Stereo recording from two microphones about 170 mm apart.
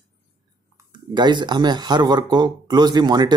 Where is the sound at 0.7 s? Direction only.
25° right (ahead or behind).